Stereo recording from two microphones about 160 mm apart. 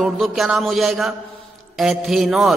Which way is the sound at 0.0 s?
Centre (ahead or behind).